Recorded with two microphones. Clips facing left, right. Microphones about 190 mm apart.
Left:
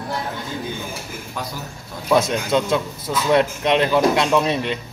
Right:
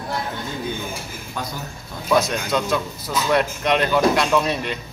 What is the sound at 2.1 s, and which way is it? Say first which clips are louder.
Speech: left 2 dB; 25° left (ahead or behind).